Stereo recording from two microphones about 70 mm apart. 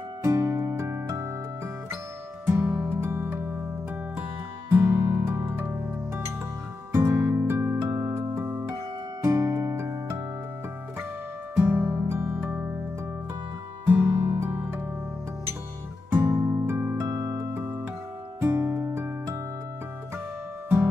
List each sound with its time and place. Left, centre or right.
0.2 s music: right
2.4 s music: right
4.2 s music: right
9.2 s music: right
11.6 s music: right
12.2 s music: right
13.8 s music: right
16.1 s music: right